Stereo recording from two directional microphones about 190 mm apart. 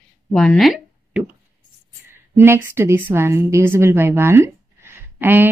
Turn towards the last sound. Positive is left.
turn(degrees=-10)  # may be behind; listen again after turning